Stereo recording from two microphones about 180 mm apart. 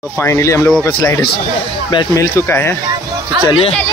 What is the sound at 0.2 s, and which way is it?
Speech, 15° left (ahead or behind).